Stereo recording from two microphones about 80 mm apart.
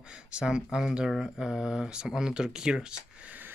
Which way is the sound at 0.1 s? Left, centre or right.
Centre.